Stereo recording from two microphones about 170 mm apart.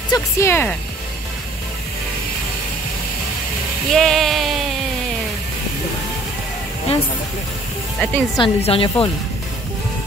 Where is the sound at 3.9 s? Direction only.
Centre (ahead or behind).